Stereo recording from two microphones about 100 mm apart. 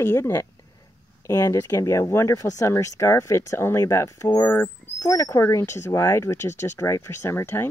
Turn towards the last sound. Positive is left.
turn(degrees=25)  # may be behind; listen again after turning